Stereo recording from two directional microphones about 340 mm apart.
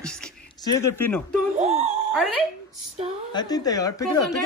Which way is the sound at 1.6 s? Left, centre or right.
Centre.